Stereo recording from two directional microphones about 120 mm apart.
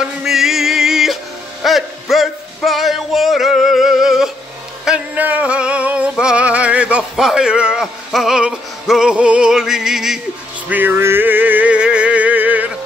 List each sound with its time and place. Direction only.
0.2 s music: 5° right (ahead or behind)
10.7 s music: 15° right (ahead or behind)